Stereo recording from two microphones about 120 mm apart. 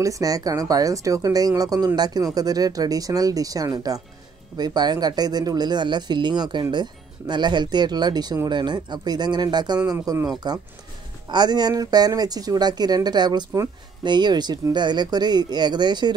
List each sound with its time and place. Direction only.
0.0 s speech: 30° right (ahead or behind)